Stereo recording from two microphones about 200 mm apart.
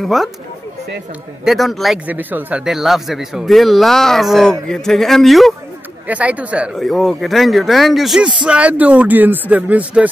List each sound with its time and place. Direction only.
0.0 s speech: centre (ahead or behind)
1.4 s speech: centre (ahead or behind)